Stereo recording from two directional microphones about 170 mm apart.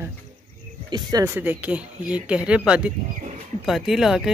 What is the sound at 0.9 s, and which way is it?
Speech, 25° right (ahead or behind).